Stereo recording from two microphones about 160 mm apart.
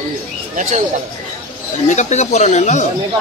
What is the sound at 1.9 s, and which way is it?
Speech, 45° left (ahead or behind).